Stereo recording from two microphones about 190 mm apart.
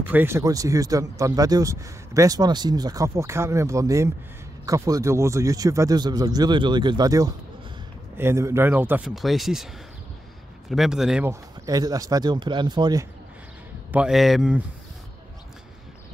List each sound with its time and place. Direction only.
0.0 s a man's voice: 10° right (ahead or behind)
10.7 s speech: centre (ahead or behind)
11.2 s a man's voice: 20° right (ahead or behind)
13.9 s speech: centre (ahead or behind)